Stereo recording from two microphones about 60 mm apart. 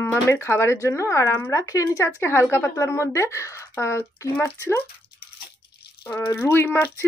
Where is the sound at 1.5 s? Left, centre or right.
Left.